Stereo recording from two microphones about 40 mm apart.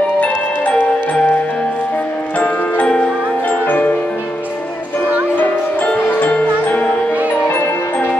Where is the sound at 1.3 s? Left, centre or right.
Left.